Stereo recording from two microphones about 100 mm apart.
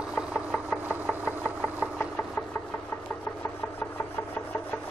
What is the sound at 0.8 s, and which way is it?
Engine, 15° right (ahead or behind).